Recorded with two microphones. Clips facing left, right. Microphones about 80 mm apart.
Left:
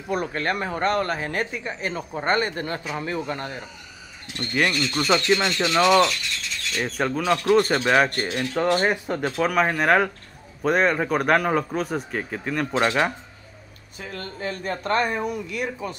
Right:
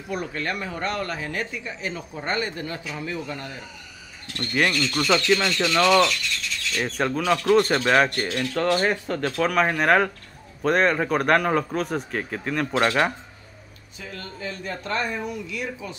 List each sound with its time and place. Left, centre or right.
0.1 s speech: left
4.3 s speech: centre
6.8 s a man's voice: centre
8.2 s speech: centre
9.4 s a man's voice: centre
13.9 s speech: left